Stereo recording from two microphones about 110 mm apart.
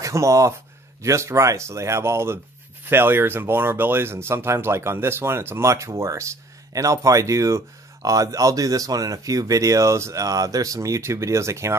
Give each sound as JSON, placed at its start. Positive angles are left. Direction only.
{"t": 0.0, "sound": "speech", "side_deg": -30}